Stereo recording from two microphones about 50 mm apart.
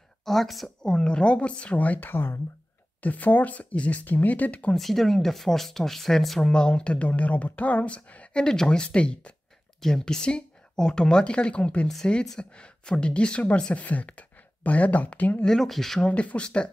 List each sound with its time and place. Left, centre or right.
0.2 s speech: centre
0.8 s speech: centre; by 2.4 s left
3.0 s speech: left
4.7 s speech: centre
6.4 s speech: centre
9.8 s speech: centre
13.8 s speech: left
15.4 s speech: centre
16.1 s speech: left